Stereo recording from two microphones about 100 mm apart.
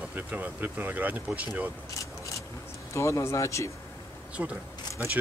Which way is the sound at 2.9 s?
30° left (ahead or behind).